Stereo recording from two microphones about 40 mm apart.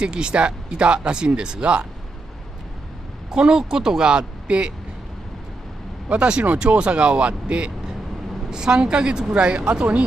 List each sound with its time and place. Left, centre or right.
0.0 s speech: right
3.3 s speech: centre
6.0 s speech: right